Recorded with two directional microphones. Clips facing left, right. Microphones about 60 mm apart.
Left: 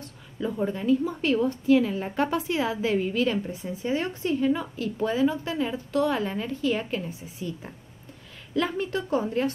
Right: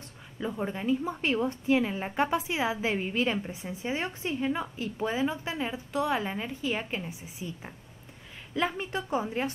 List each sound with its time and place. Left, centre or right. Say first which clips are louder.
0.4 s a woman's voice: left 4 dB; centre